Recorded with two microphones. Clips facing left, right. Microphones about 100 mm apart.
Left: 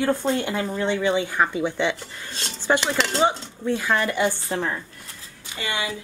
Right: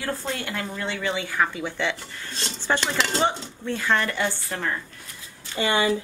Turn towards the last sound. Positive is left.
turn(degrees=-35)  # may be behind; listen again after turning